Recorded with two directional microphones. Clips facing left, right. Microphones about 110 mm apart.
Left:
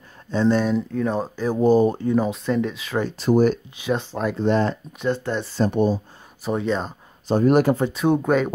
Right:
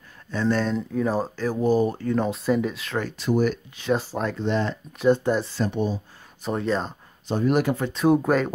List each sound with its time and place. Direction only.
0.3 s speech: 20° left (ahead or behind)
0.7 s speech: centre (ahead or behind)
1.3 s speech: 20° left (ahead or behind)
2.0 s speech: 5° left (ahead or behind)
3.0 s speech: 30° left (ahead or behind)
3.9 s speech: 5° right (ahead or behind)
4.4 s speech: 45° left (ahead or behind)
5.1 s speech: 15° right (ahead or behind)
5.7 s speech: 50° left (ahead or behind)
6.4 s speech: centre (ahead or behind)
7.2 s speech: 45° left (ahead or behind)
7.9 s speech: centre (ahead or behind)